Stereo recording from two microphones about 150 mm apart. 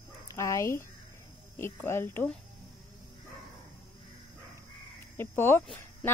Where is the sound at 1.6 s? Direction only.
15° left (ahead or behind).